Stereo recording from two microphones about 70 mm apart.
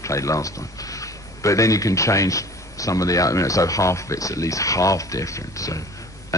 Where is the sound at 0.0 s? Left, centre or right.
Left.